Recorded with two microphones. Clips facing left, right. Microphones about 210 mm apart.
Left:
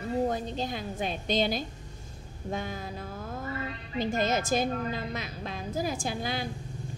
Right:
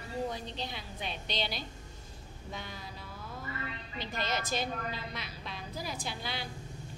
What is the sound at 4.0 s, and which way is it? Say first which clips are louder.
A woman's voice: left 9 dB; 45° left (ahead or behind).